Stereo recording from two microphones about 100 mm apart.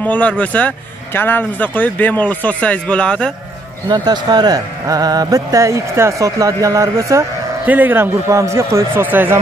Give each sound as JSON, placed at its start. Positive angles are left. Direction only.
{"t": 0.0, "sound": "speech", "side_deg": 15}
{"t": 3.9, "sound": "speech", "side_deg": -45}
{"t": 7.6, "sound": "speech", "side_deg": -20}